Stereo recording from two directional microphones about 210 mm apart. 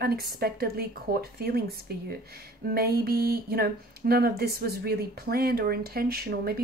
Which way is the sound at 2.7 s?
45° right (ahead or behind).